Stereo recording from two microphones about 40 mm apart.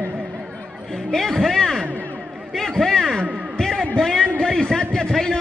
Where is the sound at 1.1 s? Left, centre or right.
Centre.